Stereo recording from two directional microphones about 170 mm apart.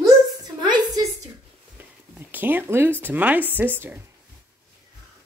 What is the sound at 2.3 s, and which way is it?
Speech, 10° right (ahead or behind).